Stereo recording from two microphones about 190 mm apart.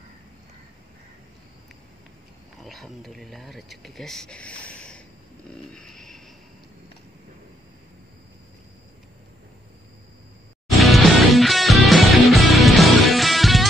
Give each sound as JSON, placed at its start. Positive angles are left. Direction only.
{"t": 2.6, "sound": "speech", "side_deg": 0}
{"t": 4.6, "sound": "a sound", "side_deg": 5}
{"t": 10.8, "sound": "music", "side_deg": 0}